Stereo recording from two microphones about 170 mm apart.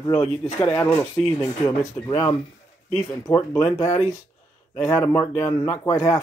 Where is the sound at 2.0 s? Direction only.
20° left (ahead or behind).